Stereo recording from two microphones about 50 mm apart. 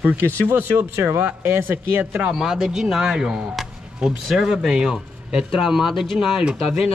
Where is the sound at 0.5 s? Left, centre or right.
Right.